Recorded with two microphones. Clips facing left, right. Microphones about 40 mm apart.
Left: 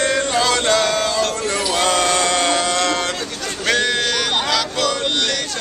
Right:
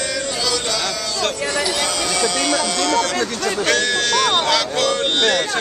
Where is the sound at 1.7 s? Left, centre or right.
Left.